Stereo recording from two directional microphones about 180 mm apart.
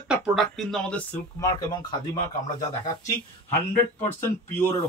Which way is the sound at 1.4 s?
20° left (ahead or behind).